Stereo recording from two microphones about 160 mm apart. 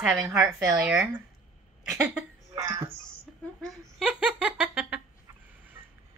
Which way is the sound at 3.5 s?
5° right (ahead or behind).